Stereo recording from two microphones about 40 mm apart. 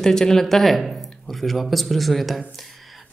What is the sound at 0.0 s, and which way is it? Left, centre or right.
Speech, centre.